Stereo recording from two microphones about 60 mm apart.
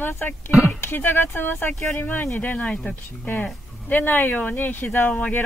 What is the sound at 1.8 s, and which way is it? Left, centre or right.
Speech, left.